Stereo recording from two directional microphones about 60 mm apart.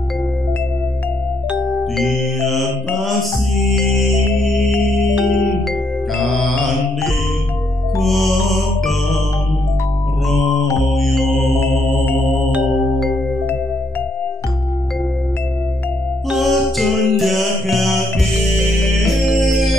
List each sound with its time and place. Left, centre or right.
2.0 s music: centre
5.2 s music: centre
10.3 s music: centre
11.6 s music: left
12.7 s music: centre
16.3 s music: centre
19.5 s music: centre